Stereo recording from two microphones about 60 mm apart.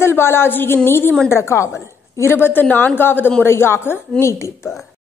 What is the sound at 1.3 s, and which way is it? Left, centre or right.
A woman's voice, left.